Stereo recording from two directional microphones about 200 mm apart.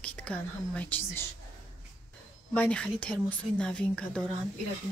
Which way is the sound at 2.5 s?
5° left (ahead or behind).